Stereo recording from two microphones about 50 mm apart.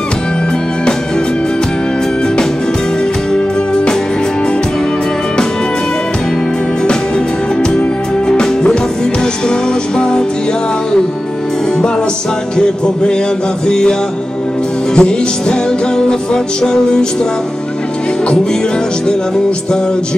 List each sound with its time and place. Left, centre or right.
8.3 s music: centre
12.5 s music: centre
15.0 s music: centre
16.6 s music: centre